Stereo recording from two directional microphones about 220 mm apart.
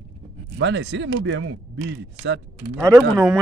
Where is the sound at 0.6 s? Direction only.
55° right (ahead or behind).